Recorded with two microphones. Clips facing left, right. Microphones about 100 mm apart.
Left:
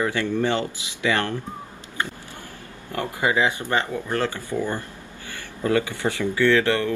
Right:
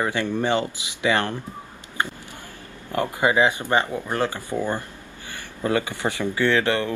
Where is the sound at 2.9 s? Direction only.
20° right (ahead or behind).